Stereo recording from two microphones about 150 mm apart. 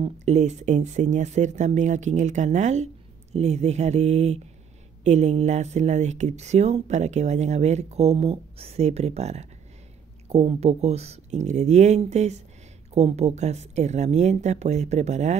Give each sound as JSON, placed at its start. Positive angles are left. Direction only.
{"t": 0.0, "sound": "speech", "side_deg": -50}